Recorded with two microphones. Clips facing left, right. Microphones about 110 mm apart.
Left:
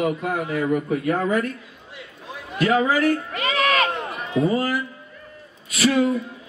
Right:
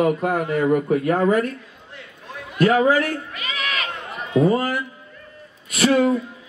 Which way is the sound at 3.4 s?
35° left (ahead or behind).